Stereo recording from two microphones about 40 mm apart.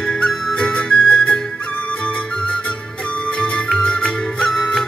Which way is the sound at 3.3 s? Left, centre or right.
Left.